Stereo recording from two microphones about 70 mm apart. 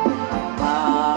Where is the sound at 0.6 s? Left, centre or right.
Centre.